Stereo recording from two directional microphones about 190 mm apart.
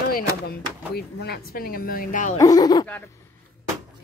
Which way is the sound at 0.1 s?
55° left (ahead or behind).